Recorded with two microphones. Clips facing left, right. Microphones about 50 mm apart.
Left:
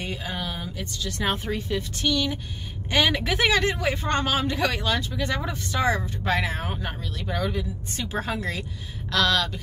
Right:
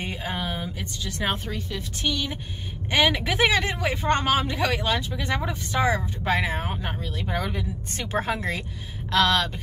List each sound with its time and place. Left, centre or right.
0.0 s a sound: right
0.7 s speech: centre
7.0 s speech: right
7.5 s a woman's voice: right